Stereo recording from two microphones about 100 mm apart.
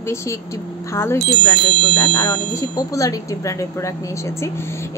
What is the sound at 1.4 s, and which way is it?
A woman's voice, 40° left (ahead or behind).